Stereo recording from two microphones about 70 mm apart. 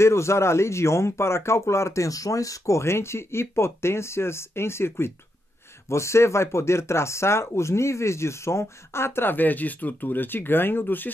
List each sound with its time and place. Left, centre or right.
0.0 s speech: left